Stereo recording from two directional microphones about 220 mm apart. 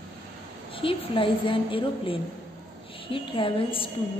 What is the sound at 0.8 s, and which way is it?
A woman's voice, 25° left (ahead or behind).